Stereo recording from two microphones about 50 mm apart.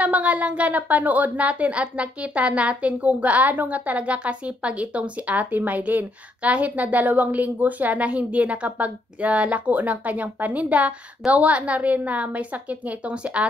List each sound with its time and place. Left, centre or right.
0.0 s speech: right